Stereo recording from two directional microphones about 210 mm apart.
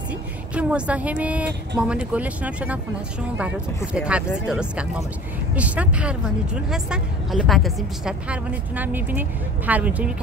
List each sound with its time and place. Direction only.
0.6 s speech: 5° right (ahead or behind)